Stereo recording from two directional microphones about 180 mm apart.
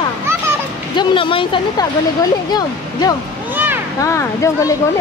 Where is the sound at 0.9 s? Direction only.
30° left (ahead or behind).